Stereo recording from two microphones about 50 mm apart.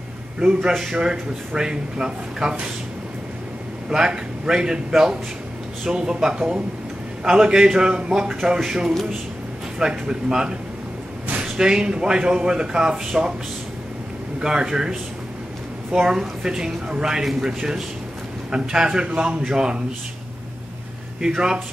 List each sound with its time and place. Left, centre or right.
0.4 s speech: centre
3.9 s speech: centre
14.4 s speech: centre
16.0 s speech: centre
21.2 s speech: centre